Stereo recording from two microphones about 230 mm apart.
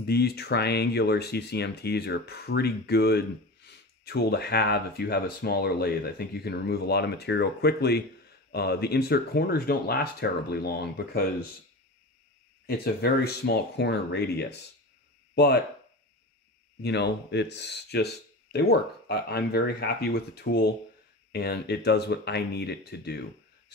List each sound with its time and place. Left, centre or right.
0.0 s speech: left
12.6 s speech: left
16.8 s speech: left